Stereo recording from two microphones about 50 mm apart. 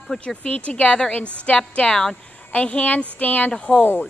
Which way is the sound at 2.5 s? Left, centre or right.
Left.